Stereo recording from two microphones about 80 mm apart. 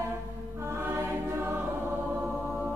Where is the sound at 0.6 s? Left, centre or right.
Right.